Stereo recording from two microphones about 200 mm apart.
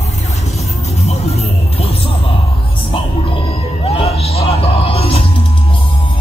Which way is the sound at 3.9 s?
30° left (ahead or behind).